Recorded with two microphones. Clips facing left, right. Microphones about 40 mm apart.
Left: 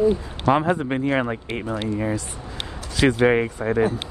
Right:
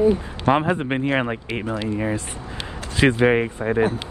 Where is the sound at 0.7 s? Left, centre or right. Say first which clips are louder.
Even; right.